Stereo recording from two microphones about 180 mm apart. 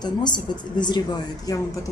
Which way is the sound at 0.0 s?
25° left (ahead or behind).